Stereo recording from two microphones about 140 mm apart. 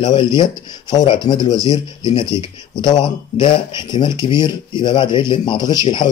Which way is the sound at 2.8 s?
35° left (ahead or behind).